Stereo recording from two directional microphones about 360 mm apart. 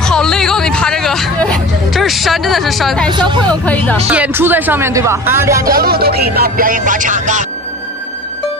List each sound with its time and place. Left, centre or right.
0.0 s hubbub: centre
3.1 s speech: centre
3.6 s speech: centre
5.7 s speech: right